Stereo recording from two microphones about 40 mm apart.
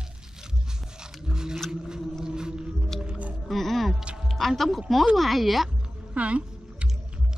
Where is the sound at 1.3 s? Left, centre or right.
Centre.